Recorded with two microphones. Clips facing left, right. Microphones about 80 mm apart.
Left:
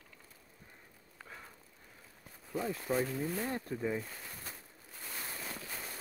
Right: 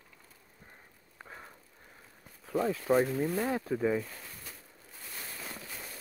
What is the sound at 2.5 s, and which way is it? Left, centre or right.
Speech, right.